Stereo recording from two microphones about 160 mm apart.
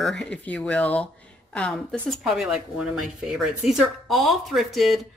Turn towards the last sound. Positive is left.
turn(degrees=0)  # may be behind; listen again after turning